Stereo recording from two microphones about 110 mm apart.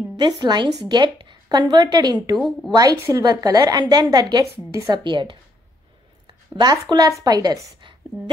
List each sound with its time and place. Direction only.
0.4 s a woman's voice: 35° right (ahead or behind)
2.3 s speech: 5° left (ahead or behind)
2.7 s a woman's voice: 35° right (ahead or behind)